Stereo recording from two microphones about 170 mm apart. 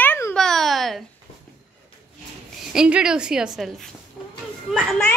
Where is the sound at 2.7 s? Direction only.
5° right (ahead or behind).